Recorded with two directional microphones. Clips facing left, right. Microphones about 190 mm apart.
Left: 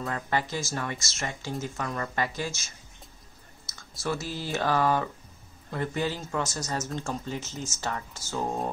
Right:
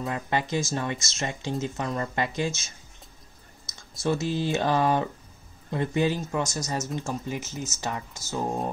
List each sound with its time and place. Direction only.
0.0 s speech: 15° right (ahead or behind)
4.0 s speech: 20° right (ahead or behind)